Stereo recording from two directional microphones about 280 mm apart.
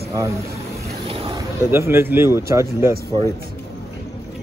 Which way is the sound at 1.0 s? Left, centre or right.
Centre.